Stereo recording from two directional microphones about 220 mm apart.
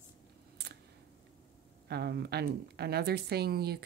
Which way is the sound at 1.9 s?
45° right (ahead or behind).